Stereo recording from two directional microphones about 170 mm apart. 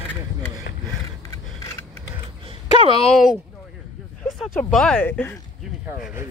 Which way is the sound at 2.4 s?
30° right (ahead or behind).